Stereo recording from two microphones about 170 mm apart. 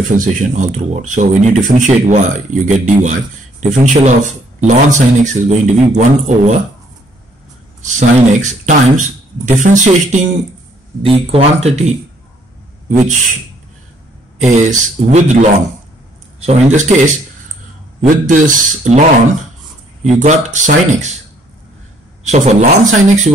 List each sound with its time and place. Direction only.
0.1 s speech: 45° right (ahead or behind)
7.8 s speech: 45° right (ahead or behind)
11.0 s speech: 35° right (ahead or behind)
14.4 s speech: 45° right (ahead or behind)
16.4 s speech: 45° right (ahead or behind)
22.2 s speech: 45° right (ahead or behind)